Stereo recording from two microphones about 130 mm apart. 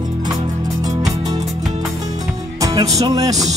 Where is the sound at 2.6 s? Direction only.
25° right (ahead or behind).